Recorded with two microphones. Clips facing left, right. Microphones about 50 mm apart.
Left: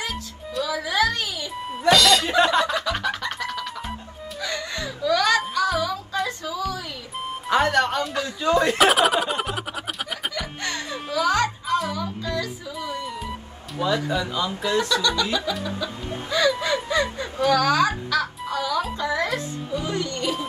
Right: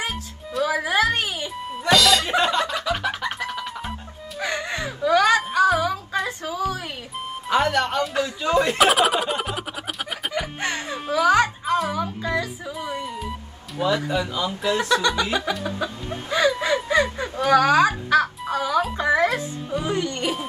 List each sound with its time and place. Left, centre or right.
0.7 s music: right
1.7 s music: centre
2.8 s music: centre
4.4 s music: right
6.2 s a sound: right
7.4 s music: centre
8.7 s a sound: centre
10.3 s music: right
14.0 s speech: centre
14.7 s speech: right
15.6 s a sound: right
18.5 s music: right